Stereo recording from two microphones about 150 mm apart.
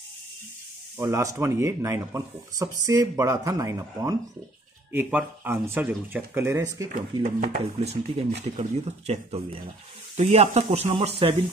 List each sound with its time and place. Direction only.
0.9 s speech: 20° right (ahead or behind)
7.2 s speech: 65° right (ahead or behind)
8.5 s speech: 40° right (ahead or behind)